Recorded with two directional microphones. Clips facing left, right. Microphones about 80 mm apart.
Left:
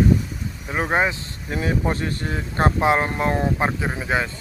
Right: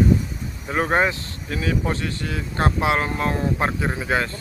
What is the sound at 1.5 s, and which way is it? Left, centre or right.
Speech, left.